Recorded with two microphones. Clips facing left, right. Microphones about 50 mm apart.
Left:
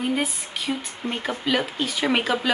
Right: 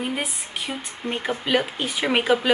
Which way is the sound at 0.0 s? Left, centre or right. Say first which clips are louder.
Left 3 dB; centre.